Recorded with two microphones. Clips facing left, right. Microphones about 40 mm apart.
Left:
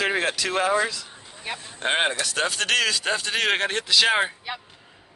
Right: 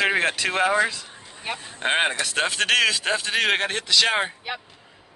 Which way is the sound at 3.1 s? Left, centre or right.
Centre.